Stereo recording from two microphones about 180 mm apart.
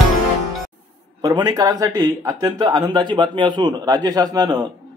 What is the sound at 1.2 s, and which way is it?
A man's voice, 20° right (ahead or behind).